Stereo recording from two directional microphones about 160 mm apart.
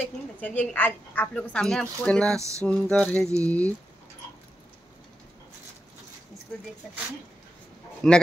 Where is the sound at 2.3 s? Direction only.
20° right (ahead or behind).